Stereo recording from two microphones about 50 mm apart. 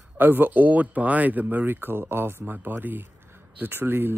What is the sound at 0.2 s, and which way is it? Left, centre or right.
Speech, right.